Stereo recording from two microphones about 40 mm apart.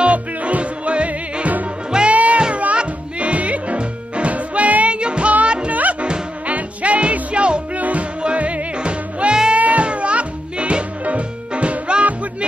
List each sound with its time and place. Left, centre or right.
0.0 s music: right
5.7 s music: right